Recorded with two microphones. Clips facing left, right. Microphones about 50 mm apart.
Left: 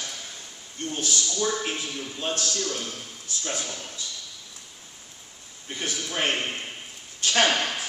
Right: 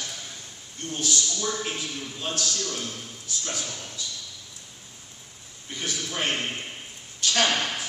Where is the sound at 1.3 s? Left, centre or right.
Centre.